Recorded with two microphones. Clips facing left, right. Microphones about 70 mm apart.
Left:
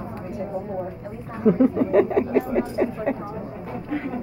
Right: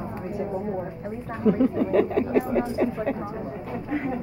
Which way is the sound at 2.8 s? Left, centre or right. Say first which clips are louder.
Even; centre.